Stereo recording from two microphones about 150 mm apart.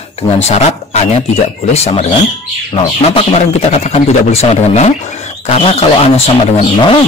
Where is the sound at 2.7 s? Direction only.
45° left (ahead or behind).